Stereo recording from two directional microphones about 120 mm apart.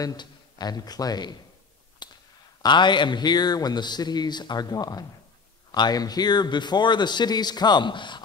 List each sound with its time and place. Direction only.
0.0 s a man's voice: 35° left (ahead or behind)
2.0 s a sound: 40° left (ahead or behind)
2.6 s a man's voice: 40° left (ahead or behind)